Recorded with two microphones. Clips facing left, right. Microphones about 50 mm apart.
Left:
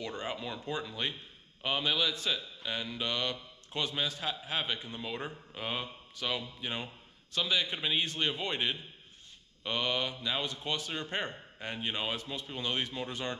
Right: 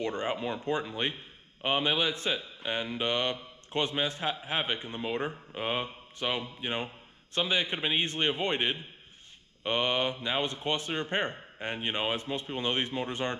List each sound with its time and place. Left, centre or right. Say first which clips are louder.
0.0 s a man's voice: right 6 dB; right